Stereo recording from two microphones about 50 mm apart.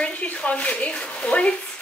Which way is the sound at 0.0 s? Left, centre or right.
Left.